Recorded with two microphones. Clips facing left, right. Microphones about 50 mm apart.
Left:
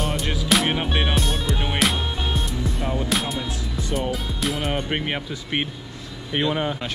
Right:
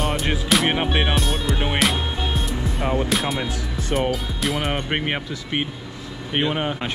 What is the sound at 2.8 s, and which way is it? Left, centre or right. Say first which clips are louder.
Music: right 6 dB; right.